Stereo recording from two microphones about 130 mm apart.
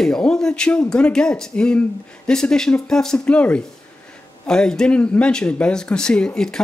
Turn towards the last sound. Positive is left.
turn(degrees=5)  # may be behind; listen again after turning